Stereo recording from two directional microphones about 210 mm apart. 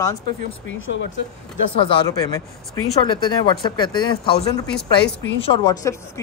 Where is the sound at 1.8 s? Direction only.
15° left (ahead or behind).